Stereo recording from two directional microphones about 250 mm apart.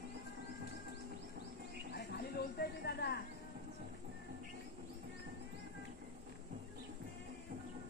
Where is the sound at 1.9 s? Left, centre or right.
Left.